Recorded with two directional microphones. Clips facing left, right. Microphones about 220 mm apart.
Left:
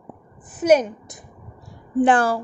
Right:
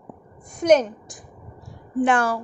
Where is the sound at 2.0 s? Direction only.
30° left (ahead or behind).